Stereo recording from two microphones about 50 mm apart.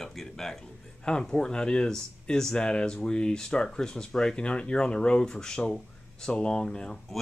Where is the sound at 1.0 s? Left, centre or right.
Centre.